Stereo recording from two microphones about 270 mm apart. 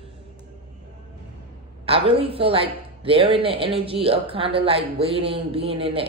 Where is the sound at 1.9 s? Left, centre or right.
Centre.